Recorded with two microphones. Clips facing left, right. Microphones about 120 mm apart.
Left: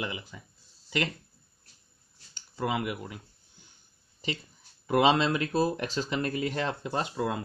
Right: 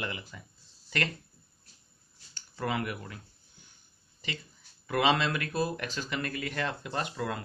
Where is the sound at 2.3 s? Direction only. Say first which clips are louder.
Left 2 dB; 15° left (ahead or behind).